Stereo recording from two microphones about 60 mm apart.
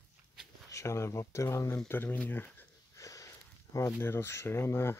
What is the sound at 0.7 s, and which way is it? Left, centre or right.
Speech, left.